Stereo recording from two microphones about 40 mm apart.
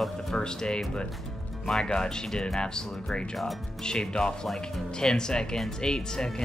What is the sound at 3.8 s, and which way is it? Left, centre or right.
Speech, centre.